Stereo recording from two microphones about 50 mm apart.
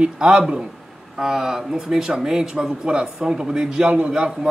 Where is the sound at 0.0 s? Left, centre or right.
Right.